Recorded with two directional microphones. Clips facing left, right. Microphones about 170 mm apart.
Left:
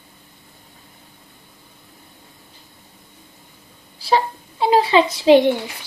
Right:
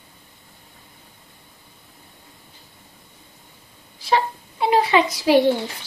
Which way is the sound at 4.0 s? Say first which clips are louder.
Left 2 dB; 30° left (ahead or behind).